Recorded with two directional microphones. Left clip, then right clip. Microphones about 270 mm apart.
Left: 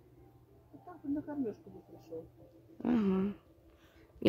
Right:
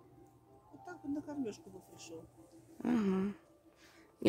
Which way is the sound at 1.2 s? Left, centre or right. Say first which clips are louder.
Left 3 dB; centre.